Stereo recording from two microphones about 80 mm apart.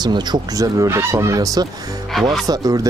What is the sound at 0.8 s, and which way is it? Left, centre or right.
Speech, right.